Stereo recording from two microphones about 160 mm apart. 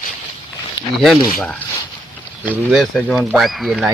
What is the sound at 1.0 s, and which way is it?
Speech, centre (ahead or behind).